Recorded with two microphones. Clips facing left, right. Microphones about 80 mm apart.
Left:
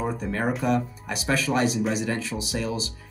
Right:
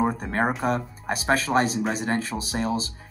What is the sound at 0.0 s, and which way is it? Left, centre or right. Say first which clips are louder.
Speech: right 3 dB; right.